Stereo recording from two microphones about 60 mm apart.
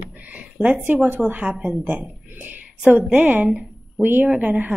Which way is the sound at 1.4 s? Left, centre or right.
Centre.